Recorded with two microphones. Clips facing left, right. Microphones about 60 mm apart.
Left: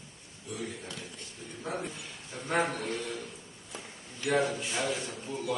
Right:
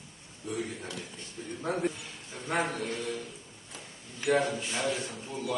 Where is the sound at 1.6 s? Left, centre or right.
Right.